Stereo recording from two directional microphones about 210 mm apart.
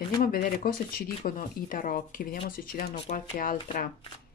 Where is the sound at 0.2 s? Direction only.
40° left (ahead or behind).